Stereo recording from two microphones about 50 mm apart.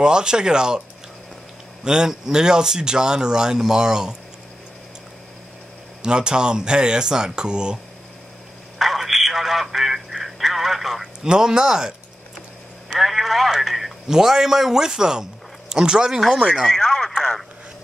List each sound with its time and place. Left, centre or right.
0.0 s speech: centre
1.9 s speech: centre
6.0 s speech: centre
8.7 s telephone: centre
11.2 s speech: centre
13.0 s speech: centre
16.6 s radio: centre